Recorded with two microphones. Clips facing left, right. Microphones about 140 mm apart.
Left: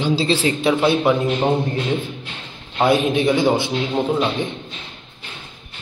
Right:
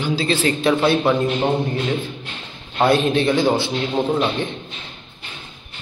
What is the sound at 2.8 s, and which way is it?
Speech, 10° left (ahead or behind).